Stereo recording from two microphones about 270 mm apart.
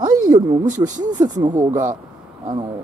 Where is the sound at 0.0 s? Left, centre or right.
Centre.